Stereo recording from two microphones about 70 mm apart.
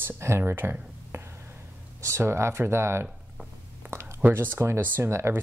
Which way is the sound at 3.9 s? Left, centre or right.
Right.